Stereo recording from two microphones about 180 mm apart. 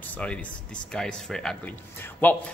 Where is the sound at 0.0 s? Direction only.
10° left (ahead or behind).